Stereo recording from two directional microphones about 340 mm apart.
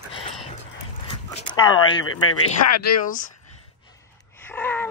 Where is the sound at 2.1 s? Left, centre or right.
Left.